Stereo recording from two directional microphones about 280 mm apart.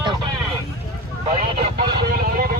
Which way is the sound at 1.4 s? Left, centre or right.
Right.